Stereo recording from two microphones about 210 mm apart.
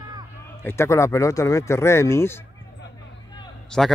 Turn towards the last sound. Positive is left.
turn(degrees=0)  # may be behind; listen again after turning